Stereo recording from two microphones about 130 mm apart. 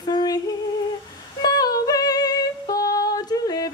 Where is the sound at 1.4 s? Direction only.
30° left (ahead or behind).